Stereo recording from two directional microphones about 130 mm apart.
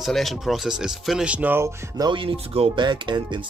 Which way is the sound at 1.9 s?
40° right (ahead or behind).